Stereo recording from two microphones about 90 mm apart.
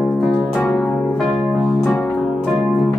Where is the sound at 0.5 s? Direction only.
10° left (ahead or behind).